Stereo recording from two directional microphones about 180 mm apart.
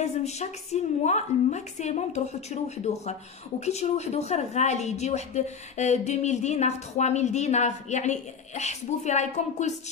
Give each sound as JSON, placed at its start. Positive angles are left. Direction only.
{"t": 0.0, "sound": "a woman's voice", "side_deg": 40}